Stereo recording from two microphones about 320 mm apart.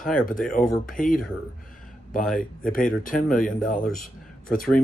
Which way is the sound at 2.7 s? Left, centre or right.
Left.